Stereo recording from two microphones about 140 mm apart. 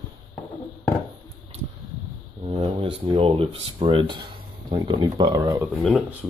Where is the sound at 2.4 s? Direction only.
45° right (ahead or behind).